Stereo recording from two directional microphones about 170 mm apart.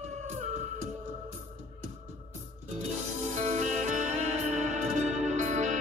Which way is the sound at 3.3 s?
45° right (ahead or behind).